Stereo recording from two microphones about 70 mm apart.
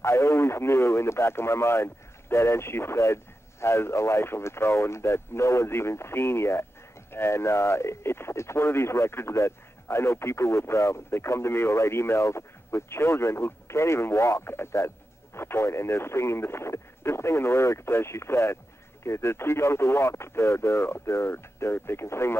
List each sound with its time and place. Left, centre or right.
0.0 s speech: left